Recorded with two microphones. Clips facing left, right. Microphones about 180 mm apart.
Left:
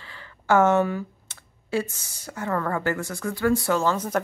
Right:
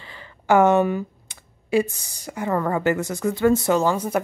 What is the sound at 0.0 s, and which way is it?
Speech, 20° right (ahead or behind).